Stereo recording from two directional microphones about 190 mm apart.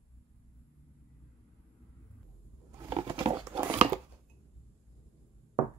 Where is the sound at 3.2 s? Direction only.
15° right (ahead or behind).